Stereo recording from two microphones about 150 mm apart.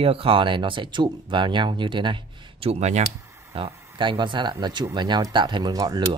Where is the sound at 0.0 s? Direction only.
40° right (ahead or behind).